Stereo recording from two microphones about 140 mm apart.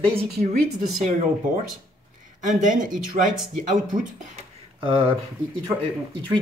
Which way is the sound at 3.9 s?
65° right (ahead or behind).